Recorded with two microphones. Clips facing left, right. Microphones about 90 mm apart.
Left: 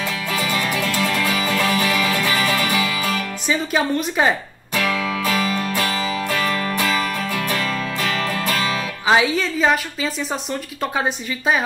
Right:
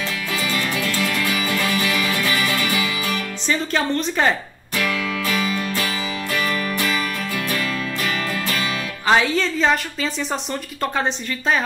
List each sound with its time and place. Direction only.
0.3 s music: 25° left (ahead or behind)
3.4 s a woman's voice: 10° left (ahead or behind)
4.7 s music: 25° left (ahead or behind)
6.3 s music: 35° left (ahead or behind)
9.0 s a woman's voice: 5° left (ahead or behind)